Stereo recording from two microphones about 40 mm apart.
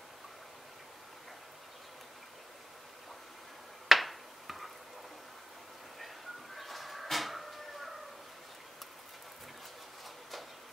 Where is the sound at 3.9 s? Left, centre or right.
Centre.